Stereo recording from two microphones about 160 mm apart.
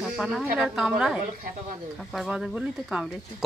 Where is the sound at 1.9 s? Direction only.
Centre (ahead or behind).